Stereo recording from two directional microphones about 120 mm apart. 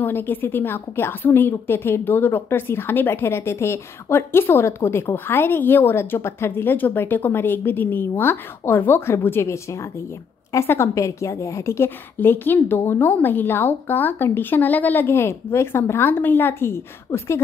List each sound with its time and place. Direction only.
0.0 s a woman's voice: 15° left (ahead or behind)